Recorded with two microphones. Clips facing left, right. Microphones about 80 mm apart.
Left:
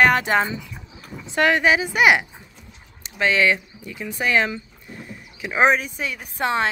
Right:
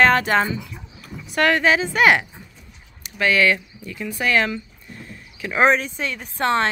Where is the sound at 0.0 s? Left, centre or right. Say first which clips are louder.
Right 1 dB; centre.